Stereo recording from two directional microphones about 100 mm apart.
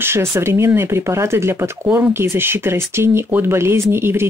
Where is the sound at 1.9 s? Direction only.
15° right (ahead or behind).